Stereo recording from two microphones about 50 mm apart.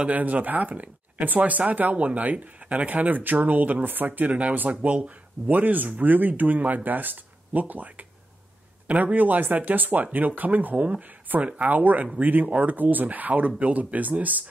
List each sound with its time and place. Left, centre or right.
0.0 s speech: right